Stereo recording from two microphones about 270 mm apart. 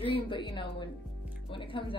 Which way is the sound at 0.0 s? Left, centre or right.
Centre.